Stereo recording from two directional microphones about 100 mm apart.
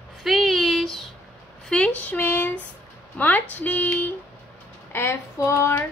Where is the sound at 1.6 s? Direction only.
10° left (ahead or behind); by 5.7 s 30° left (ahead or behind).